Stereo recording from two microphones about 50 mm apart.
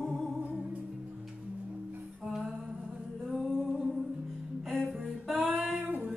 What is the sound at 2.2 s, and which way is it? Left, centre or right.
Music, centre.